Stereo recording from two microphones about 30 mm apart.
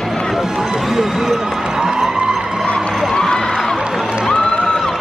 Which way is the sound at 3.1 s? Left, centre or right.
Left.